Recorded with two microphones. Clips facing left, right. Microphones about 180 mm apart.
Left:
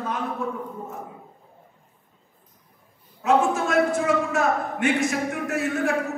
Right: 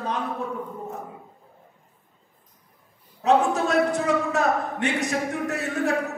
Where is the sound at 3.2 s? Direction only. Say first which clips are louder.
Even; 35° right (ahead or behind).